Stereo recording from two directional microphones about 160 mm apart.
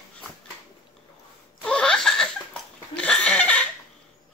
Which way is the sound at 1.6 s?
5° left (ahead or behind).